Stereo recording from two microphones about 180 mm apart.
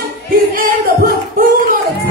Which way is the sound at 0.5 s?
55° right (ahead or behind).